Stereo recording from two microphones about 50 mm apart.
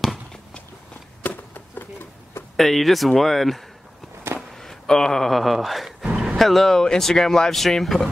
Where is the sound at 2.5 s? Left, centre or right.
Centre.